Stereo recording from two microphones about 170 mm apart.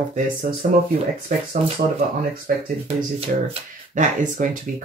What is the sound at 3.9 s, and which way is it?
Speech, 50° right (ahead or behind).